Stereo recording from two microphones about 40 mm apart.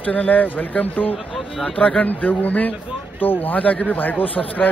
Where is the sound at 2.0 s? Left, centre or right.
Left.